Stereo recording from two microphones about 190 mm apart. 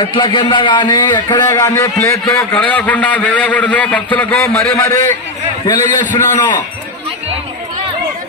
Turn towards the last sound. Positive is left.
turn(degrees=20)  # may be behind; listen again after turning